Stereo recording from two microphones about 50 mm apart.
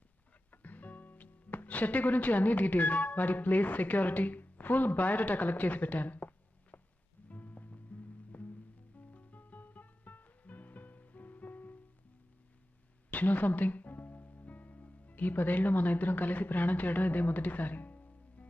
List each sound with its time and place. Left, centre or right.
0.5 s speech: left
7.2 s music: left
7.7 s music: left
13.1 s music: left